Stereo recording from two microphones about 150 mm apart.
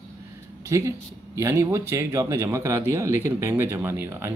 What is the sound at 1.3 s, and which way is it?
Speech, 20° right (ahead or behind).